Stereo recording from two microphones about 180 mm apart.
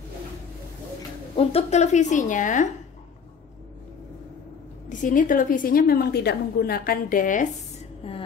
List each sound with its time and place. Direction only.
1.3 s a woman's voice: 35° left (ahead or behind)
4.8 s a woman's voice: 45° left (ahead or behind)
8.0 s a sound: 30° left (ahead or behind)